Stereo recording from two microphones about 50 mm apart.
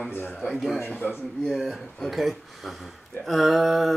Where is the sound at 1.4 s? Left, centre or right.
Centre.